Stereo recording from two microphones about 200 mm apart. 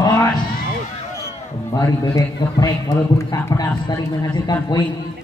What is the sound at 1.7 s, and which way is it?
A man's voice, 15° left (ahead or behind).